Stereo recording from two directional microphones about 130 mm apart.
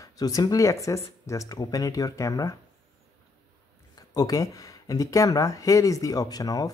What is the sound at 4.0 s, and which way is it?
Speech, 30° left (ahead or behind).